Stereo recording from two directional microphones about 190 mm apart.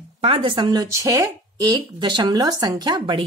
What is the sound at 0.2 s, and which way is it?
Speech, 30° right (ahead or behind).